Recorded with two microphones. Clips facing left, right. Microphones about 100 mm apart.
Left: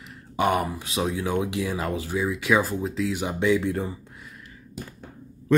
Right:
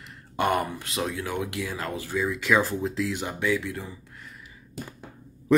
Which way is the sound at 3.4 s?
25° left (ahead or behind).